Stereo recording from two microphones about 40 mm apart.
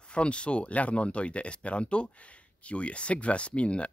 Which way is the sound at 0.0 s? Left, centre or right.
Left.